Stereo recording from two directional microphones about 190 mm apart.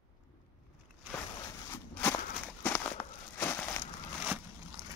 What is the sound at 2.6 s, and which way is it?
Crumpling, 10° left (ahead or behind).